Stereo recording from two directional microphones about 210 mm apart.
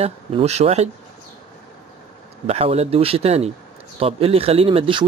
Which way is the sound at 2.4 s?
30° right (ahead or behind).